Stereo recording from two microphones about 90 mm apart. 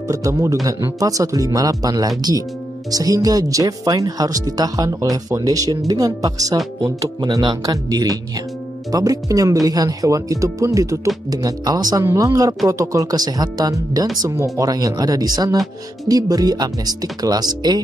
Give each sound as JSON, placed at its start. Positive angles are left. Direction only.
{"t": 0.1, "sound": "speech", "side_deg": -35}
{"t": 7.6, "sound": "speech", "side_deg": -45}
{"t": 12.0, "sound": "speech", "side_deg": -35}